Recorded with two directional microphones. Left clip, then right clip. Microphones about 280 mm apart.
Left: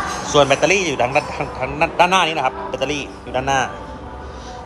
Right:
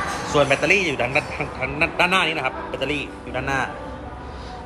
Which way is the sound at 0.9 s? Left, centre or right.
Centre.